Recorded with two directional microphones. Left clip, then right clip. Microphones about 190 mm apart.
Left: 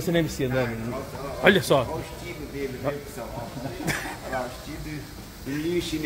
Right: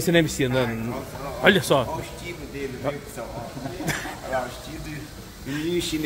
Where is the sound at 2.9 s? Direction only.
15° right (ahead or behind).